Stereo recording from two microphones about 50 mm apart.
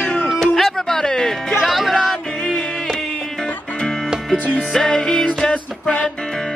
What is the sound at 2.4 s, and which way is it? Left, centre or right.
Music, centre.